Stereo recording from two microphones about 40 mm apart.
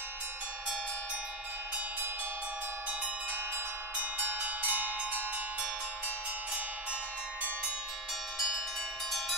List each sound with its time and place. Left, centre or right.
3.9 s bell: right